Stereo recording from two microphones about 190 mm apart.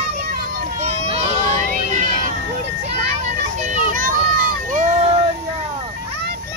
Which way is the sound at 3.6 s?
40° right (ahead or behind).